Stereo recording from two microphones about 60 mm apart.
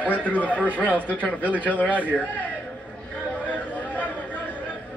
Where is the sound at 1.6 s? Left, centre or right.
Left.